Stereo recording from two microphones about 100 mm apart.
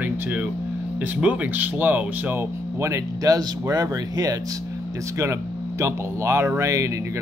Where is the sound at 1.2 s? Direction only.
15° right (ahead or behind).